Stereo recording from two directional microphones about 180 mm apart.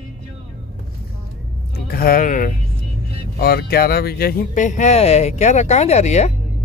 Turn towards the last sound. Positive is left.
turn(degrees=40)  # may be behind; listen again after turning